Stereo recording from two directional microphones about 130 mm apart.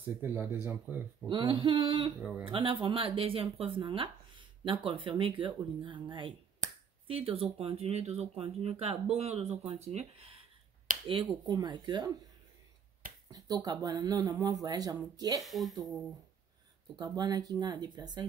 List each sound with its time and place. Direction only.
0.2 s speech: 15° right (ahead or behind)
1.3 s speech: 35° right (ahead or behind)
13.3 s speech: 30° right (ahead or behind)
15.4 s a woman's voice: centre (ahead or behind)
17.0 s speech: 30° right (ahead or behind)